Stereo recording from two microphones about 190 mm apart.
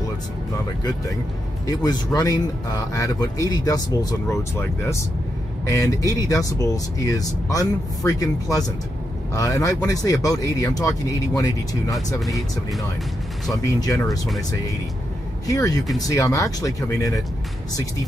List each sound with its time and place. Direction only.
1.7 s speech: 20° left (ahead or behind)
13.7 s speech: 20° left (ahead or behind)
15.4 s speech: 20° left (ahead or behind)